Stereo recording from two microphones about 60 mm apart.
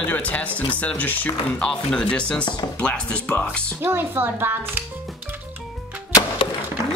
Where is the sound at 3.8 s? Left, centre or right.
Right.